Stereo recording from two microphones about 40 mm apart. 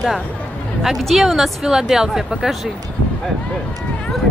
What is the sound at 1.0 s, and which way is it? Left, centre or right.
Speech, centre.